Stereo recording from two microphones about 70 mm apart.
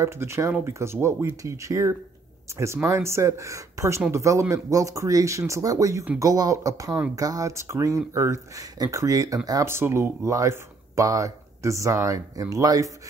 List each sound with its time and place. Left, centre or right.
0.0 s speech: right
1.4 s speech: right
8.7 s speech: right
9.7 s speech: right